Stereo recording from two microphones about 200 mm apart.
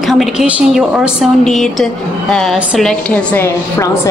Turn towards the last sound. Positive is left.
turn(degrees=10)  # may be behind; listen again after turning